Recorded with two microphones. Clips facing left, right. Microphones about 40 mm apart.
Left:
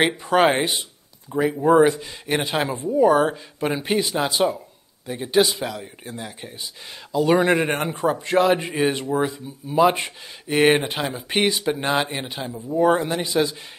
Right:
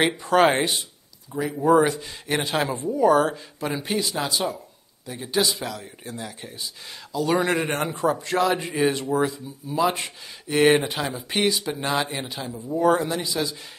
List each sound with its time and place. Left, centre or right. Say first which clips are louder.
0.0 s speech: left 1 dB; centre
1.3 s speech: left 2 dB; left
3.5 s a man's voice: left 6 dB; left